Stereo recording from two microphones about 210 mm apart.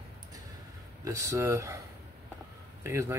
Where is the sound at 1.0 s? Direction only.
15° right (ahead or behind).